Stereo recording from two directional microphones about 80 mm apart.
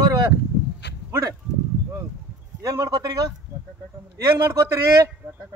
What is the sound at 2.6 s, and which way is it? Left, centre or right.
Speech, right.